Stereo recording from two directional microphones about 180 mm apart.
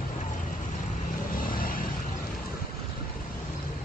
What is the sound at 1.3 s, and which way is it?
Vehicle, 50° left (ahead or behind).